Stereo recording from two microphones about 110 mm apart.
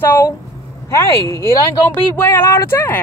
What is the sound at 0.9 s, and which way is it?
Speech, 30° left (ahead or behind).